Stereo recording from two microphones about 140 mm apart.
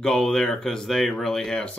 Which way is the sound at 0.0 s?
5° left (ahead or behind).